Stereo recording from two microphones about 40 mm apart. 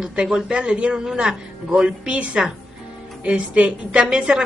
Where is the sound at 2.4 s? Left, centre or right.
Right.